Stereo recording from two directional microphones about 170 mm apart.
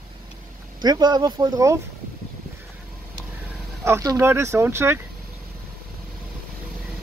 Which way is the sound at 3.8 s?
15° right (ahead or behind).